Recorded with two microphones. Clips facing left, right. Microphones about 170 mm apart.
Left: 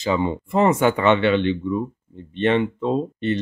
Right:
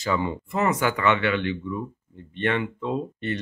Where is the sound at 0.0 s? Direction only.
20° left (ahead or behind).